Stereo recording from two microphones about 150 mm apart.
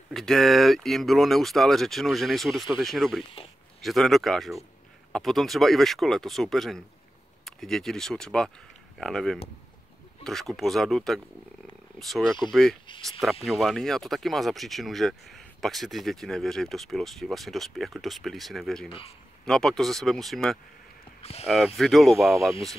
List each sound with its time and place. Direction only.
0.1 s speech: centre (ahead or behind)
18.9 s a man's voice: 35° left (ahead or behind)
19.4 s speech: 5° left (ahead or behind)
21.2 s speech: 45° left (ahead or behind)
21.5 s speech: centre (ahead or behind)